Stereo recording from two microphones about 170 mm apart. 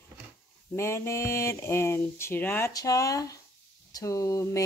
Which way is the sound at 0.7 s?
15° left (ahead or behind).